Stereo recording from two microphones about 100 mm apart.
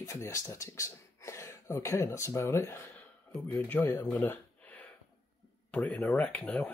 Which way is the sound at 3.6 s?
20° left (ahead or behind).